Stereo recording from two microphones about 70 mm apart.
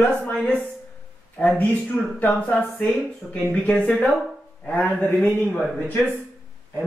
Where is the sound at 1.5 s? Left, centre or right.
Left.